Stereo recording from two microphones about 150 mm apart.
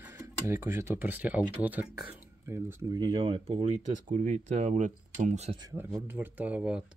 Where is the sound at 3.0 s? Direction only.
35° right (ahead or behind).